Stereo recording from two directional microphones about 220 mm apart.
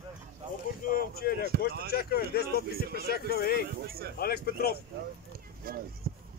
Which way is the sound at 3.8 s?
45° right (ahead or behind).